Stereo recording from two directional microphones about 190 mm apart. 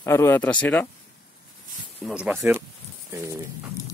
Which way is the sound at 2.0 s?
5° right (ahead or behind).